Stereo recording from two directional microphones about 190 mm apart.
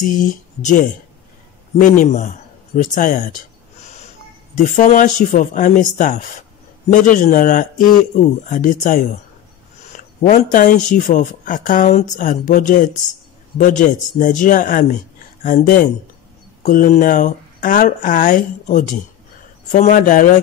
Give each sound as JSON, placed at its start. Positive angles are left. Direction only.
{"t": 0.1, "sound": "speech", "side_deg": 40}
{"t": 4.6, "sound": "speech", "side_deg": 45}